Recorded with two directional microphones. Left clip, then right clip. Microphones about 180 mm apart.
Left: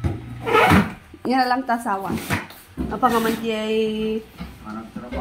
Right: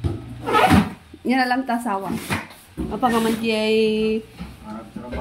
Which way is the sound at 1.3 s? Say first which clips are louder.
Left 1 dB; 15° right (ahead or behind).